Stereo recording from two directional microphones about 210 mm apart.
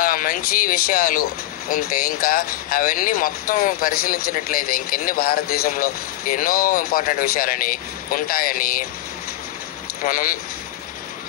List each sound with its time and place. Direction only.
0.0 s speech: 40° left (ahead or behind)
10.0 s speech: 40° left (ahead or behind)